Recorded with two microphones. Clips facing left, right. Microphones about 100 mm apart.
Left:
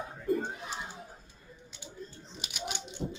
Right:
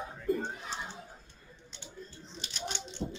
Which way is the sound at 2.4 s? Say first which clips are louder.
Left 1 dB; 15° left (ahead or behind).